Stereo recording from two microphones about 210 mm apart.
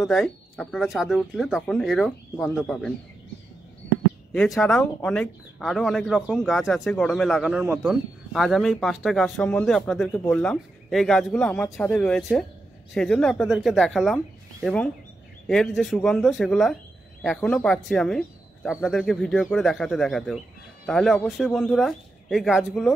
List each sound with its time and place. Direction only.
0.0 s speech: centre (ahead or behind)
4.3 s speech: 5° left (ahead or behind)